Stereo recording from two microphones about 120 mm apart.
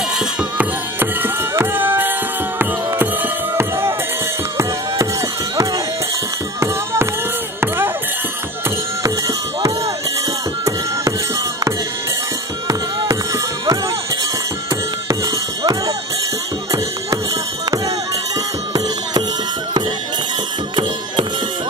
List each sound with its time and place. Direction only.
0.4 s music: 15° right (ahead or behind)
7.6 s music: 20° right (ahead or behind)
12.6 s music: 30° right (ahead or behind)